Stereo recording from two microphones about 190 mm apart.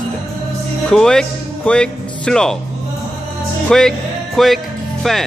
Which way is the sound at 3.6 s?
5° left (ahead or behind).